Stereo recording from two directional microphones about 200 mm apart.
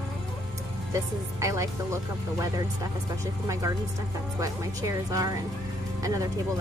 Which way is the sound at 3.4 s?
15° right (ahead or behind).